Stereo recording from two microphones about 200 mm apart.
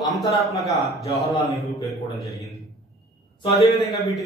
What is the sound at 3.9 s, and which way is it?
Speech, 15° left (ahead or behind).